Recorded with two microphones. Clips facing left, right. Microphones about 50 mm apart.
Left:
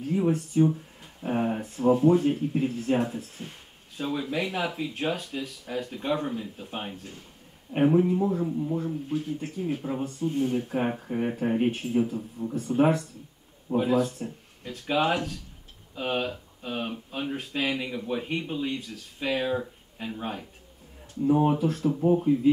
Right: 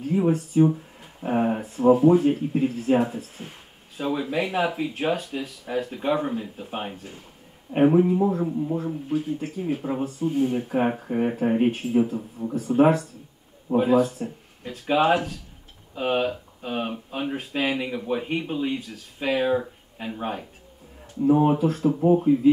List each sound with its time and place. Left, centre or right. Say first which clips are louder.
0.0 s speech: right 3 dB; centre
13.7 s speech: right 4 dB; centre
13.9 s speech: right 5 dB; centre
19.2 s speech: right 5 dB; centre